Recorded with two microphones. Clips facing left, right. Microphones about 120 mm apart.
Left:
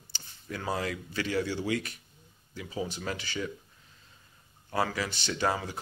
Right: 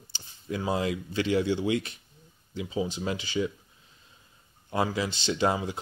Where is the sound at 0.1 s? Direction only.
15° right (ahead or behind).